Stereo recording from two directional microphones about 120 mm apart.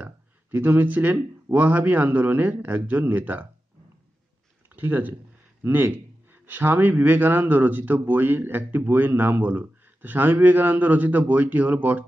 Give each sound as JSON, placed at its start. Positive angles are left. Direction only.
{"t": 0.0, "sound": "speech", "side_deg": -15}
{"t": 4.7, "sound": "speech", "side_deg": -15}